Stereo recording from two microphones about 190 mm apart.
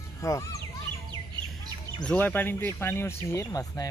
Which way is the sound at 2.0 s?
10° left (ahead or behind).